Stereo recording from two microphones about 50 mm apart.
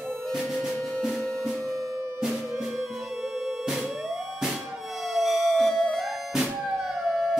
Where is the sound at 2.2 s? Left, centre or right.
Centre.